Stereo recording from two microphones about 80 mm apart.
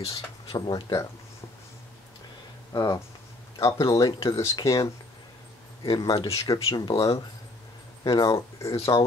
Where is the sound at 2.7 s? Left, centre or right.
Left.